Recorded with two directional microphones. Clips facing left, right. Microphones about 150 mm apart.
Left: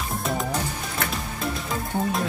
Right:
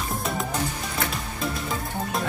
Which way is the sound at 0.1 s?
Centre (ahead or behind).